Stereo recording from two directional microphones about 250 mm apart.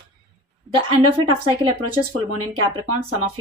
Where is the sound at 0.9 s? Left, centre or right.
Right.